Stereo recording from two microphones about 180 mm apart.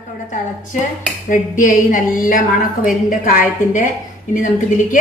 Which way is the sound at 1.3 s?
45° left (ahead or behind).